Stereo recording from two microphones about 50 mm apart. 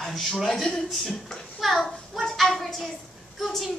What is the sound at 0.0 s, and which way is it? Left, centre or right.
A child's voice, centre.